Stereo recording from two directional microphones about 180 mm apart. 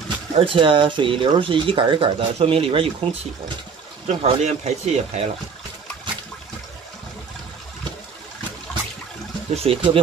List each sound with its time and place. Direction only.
0.4 s speech: 30° right (ahead or behind)
9.5 s speech: 30° right (ahead or behind)